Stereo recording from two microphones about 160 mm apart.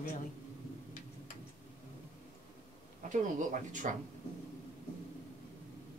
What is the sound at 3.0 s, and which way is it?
Speech, 50° right (ahead or behind).